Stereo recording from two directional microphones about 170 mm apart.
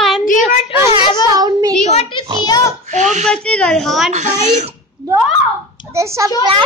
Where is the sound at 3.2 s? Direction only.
5° left (ahead or behind).